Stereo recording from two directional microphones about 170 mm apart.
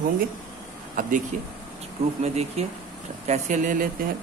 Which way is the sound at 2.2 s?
40° right (ahead or behind).